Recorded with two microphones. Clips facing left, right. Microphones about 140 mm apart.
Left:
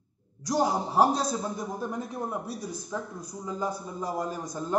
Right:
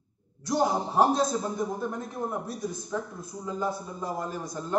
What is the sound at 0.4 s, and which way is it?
A man's voice, 10° left (ahead or behind).